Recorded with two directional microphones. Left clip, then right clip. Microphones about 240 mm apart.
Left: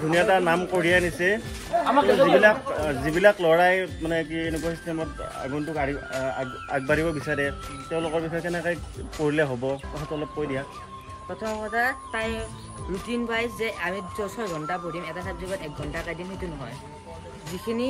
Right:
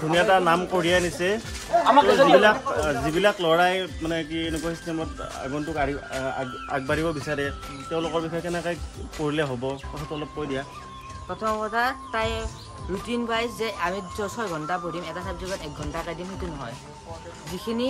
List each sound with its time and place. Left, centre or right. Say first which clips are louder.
0.1 s speech: right 2 dB; centre
1.9 s speech: right 3 dB; right
2.4 s a man's voice: even; centre
11.4 s speech: right 1 dB; centre
17.7 s speech: left 1 dB; centre